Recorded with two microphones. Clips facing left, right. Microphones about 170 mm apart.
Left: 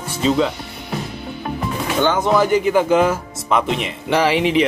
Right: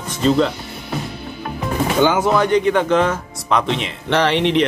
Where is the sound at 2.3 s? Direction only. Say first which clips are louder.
Even; 5° left (ahead or behind).